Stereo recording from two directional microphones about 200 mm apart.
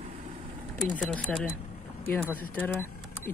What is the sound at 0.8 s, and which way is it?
Speech, 5° left (ahead or behind).